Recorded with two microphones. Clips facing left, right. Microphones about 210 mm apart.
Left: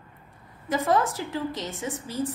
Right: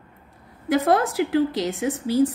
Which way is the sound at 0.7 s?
70° right (ahead or behind).